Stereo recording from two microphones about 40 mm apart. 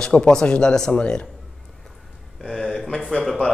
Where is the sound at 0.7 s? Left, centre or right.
Centre.